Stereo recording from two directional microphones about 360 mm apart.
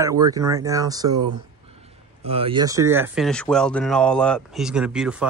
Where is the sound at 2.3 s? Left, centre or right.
Centre.